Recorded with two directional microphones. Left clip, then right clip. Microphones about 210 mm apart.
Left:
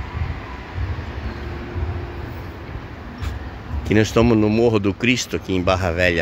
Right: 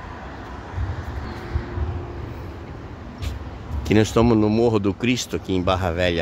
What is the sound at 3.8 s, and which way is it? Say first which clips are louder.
Speech: left 1 dB; 5° right (ahead or behind).